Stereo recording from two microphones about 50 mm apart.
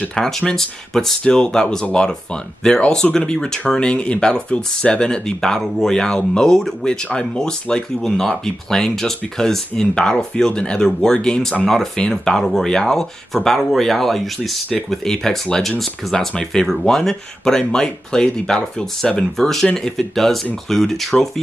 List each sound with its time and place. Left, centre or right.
0.1 s speech: centre
3.9 s speech: left
11.6 s speech: centre